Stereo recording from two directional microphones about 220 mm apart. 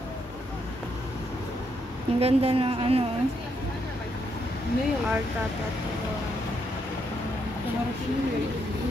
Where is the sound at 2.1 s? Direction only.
25° right (ahead or behind).